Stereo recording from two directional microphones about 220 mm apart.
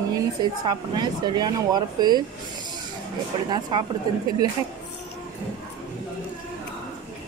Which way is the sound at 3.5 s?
20° right (ahead or behind).